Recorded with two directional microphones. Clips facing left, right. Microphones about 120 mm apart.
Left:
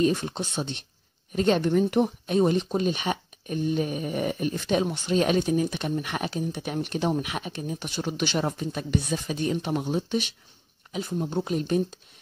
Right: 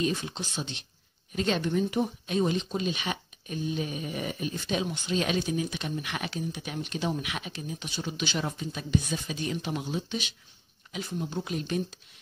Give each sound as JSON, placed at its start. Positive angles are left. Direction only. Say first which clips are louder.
{"t": 0.0, "sound": "speech", "louder": "left 6 dB", "side_deg": 50}
{"t": 6.6, "sound": "speech", "louder": "left 7 dB", "side_deg": 55}
{"t": 9.3, "sound": "speech", "louder": "left 7 dB", "side_deg": 40}